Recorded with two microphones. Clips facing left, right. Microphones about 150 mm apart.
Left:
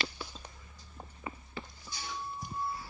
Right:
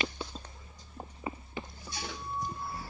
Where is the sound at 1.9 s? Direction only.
70° right (ahead or behind).